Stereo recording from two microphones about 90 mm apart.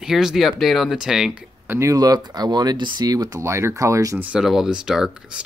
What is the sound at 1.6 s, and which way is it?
Speech, 30° right (ahead or behind).